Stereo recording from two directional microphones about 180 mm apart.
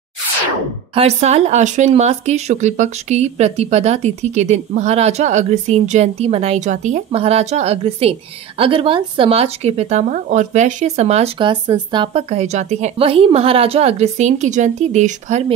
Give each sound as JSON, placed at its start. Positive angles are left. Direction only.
{"t": 0.9, "sound": "speech", "side_deg": -35}